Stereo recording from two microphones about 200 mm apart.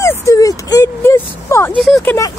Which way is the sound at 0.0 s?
15° left (ahead or behind).